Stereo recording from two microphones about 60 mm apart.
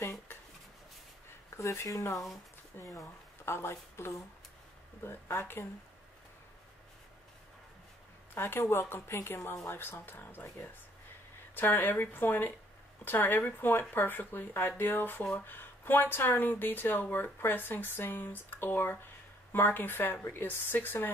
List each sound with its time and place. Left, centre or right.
0.0 s a sound: left
1.6 s speech: left
2.8 s speech: left
8.4 s speech: left